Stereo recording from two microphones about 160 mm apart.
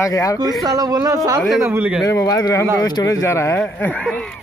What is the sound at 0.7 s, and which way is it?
Speech, 25° right (ahead or behind).